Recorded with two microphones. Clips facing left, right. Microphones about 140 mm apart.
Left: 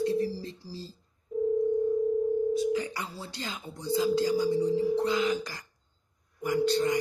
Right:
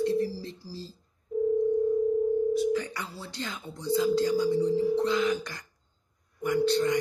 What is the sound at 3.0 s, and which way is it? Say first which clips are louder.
Speech: right 1 dB; 15° left (ahead or behind).